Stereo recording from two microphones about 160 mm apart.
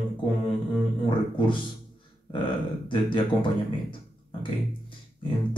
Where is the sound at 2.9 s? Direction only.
30° left (ahead or behind).